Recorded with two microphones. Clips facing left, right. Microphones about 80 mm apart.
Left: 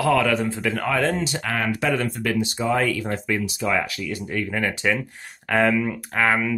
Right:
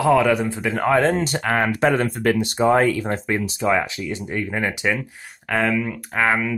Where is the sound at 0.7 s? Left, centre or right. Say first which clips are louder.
Right 7 dB; right.